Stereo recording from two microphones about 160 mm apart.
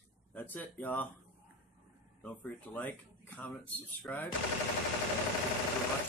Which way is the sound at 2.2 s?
10° left (ahead or behind).